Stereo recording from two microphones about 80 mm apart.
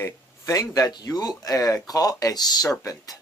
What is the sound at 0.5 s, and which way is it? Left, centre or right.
Speech, left.